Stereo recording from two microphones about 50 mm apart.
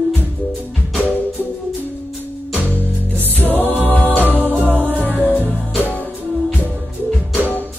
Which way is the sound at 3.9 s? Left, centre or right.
Left.